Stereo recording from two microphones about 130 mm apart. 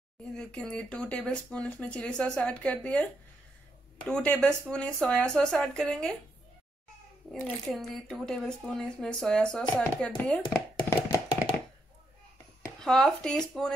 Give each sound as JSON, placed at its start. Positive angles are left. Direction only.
{"t": 0.4, "sound": "speech", "side_deg": 5}
{"t": 4.1, "sound": "speech", "side_deg": 10}
{"t": 7.3, "sound": "speech", "side_deg": 10}
{"t": 7.7, "sound": "speech", "side_deg": 0}
{"t": 11.1, "sound": "tap", "side_deg": 30}
{"t": 12.7, "sound": "speech", "side_deg": 5}